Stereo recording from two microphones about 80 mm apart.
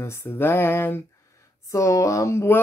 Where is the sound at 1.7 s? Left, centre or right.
Left.